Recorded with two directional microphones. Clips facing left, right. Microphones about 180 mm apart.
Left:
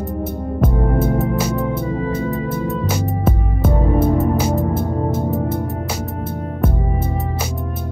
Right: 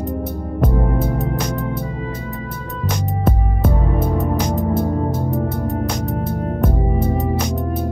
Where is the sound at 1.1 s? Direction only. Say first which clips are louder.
Left 3 dB; 5° left (ahead or behind).